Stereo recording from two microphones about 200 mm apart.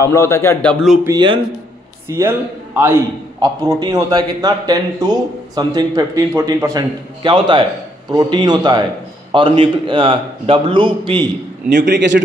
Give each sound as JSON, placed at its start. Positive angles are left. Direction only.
{"t": 0.0, "sound": "a man's voice", "side_deg": 15}
{"t": 1.0, "sound": "a man's voice", "side_deg": -20}
{"t": 11.9, "sound": "speech", "side_deg": -60}